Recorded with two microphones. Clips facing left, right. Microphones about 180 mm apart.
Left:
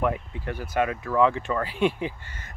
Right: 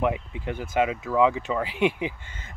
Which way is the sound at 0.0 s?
15° right (ahead or behind).